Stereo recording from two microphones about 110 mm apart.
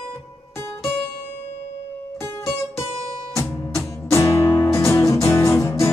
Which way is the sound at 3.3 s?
25° left (ahead or behind).